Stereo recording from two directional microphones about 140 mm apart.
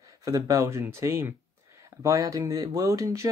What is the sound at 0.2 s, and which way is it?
Speech, 20° right (ahead or behind).